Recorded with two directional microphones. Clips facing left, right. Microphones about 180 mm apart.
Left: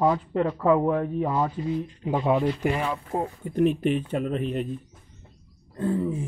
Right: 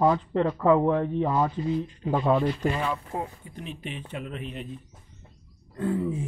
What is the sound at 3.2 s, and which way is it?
Speech, 50° left (ahead or behind).